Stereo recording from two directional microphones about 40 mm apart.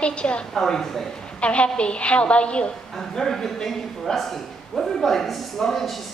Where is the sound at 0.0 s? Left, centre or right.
Left.